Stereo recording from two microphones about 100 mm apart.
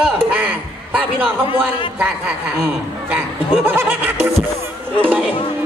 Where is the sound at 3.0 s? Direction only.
20° right (ahead or behind).